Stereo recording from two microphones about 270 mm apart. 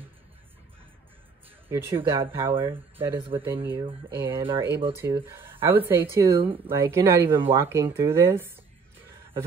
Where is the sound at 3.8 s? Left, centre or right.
Centre.